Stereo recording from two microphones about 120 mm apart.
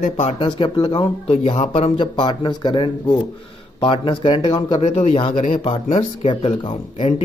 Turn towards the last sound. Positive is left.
turn(degrees=55)  # may be behind; listen again after turning